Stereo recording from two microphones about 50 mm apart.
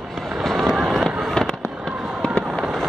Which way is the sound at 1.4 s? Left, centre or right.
Centre.